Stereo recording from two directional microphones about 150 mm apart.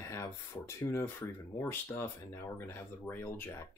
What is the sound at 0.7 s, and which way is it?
Speech, 15° left (ahead or behind).